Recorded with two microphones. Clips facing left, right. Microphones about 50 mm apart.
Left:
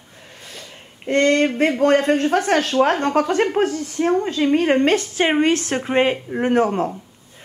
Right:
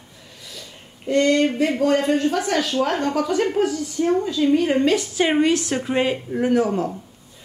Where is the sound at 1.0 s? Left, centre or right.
Left.